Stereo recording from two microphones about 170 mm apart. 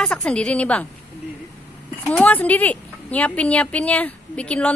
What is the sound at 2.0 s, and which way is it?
A woman's voice, 10° left (ahead or behind).